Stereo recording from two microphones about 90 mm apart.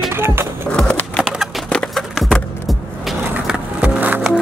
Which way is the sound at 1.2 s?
5° right (ahead or behind).